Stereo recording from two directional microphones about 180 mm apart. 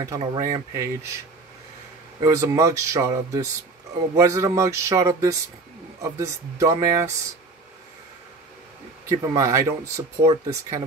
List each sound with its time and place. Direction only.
0.0 s speech: 20° right (ahead or behind)
2.1 s speech: 20° right (ahead or behind)
9.1 s speech: 20° right (ahead or behind)